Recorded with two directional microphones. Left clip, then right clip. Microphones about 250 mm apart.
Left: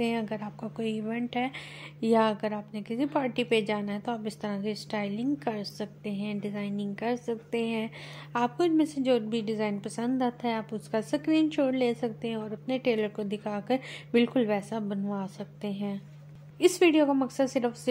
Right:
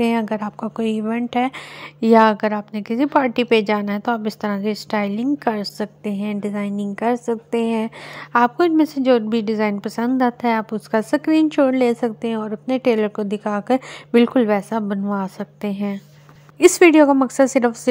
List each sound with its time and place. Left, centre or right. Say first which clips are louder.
0.0 s a woman's voice: right 11 dB; right